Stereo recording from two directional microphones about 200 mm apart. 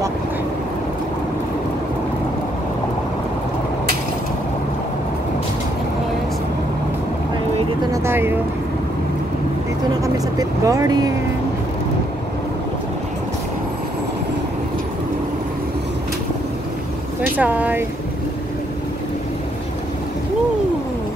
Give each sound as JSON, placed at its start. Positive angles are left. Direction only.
{"t": 7.9, "sound": "vehicle", "side_deg": -10}
{"t": 10.0, "sound": "vehicle", "side_deg": -15}
{"t": 17.4, "sound": "speech", "side_deg": -10}